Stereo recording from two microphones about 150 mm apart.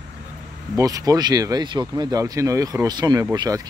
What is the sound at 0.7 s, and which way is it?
Speech, 25° right (ahead or behind).